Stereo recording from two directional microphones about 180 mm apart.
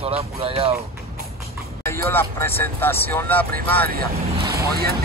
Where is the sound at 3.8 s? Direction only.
55° right (ahead or behind).